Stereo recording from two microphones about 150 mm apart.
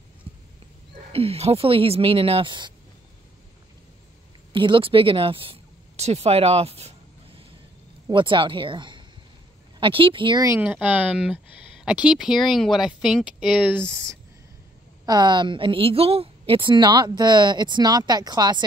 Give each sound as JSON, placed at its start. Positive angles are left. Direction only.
{"t": 0.3, "sound": "horse", "side_deg": -40}
{"t": 1.1, "sound": "speech", "side_deg": -40}
{"t": 4.5, "sound": "speech", "side_deg": -35}
{"t": 8.1, "sound": "speech", "side_deg": -35}
{"t": 10.6, "sound": "speech", "side_deg": -10}
{"t": 15.0, "sound": "a woman's voice", "side_deg": -30}